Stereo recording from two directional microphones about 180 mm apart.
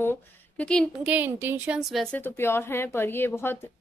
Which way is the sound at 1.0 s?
10° right (ahead or behind).